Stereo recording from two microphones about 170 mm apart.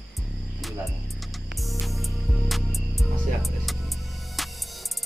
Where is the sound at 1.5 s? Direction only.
Centre (ahead or behind).